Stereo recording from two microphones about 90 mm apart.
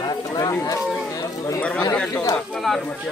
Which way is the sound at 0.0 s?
45° left (ahead or behind).